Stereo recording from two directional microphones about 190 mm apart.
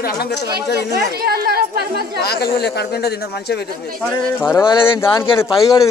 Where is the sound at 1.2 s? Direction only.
55° right (ahead or behind).